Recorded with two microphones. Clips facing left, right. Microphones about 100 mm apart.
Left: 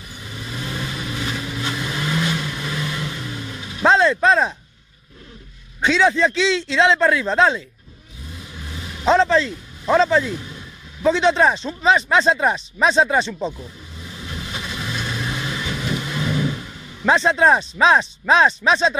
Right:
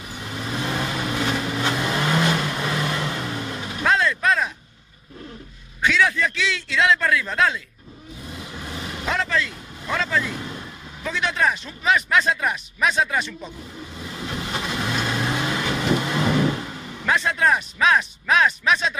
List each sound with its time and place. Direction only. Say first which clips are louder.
0.2 s vehicle: right 4 dB; 60° right (ahead or behind)
3.8 s a sound: left 6 dB; 25° left (ahead or behind)
5.8 s speech: left 4 dB; 25° left (ahead or behind)
8.6 s vehicle: right 3 dB; 55° right (ahead or behind)
9.0 s speech: left 9 dB; 25° left (ahead or behind)
10.3 s speech: left 1 dB; 55° right (ahead or behind)
11.1 s speech: left 7 dB; 25° left (ahead or behind)
14.1 s vehicle: right 3 dB; 60° right (ahead or behind)
17.0 s speech: left 5 dB; 25° left (ahead or behind)